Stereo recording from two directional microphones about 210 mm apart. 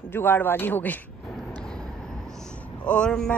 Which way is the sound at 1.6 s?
5° left (ahead or behind).